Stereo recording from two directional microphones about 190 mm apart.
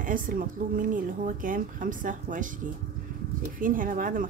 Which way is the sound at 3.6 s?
45° right (ahead or behind).